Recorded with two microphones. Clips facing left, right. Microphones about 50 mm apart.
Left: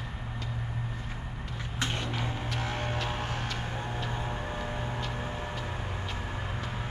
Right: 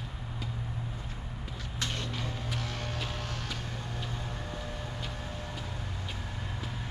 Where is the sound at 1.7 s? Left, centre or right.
Left.